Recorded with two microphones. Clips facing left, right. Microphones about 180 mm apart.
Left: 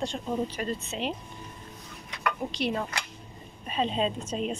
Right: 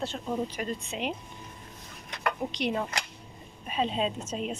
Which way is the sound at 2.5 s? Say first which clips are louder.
Left 1 dB; 20° right (ahead or behind).